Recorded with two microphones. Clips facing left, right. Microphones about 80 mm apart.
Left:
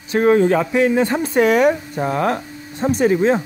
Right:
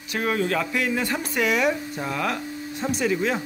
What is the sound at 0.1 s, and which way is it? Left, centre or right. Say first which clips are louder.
Speech: left 10 dB; left.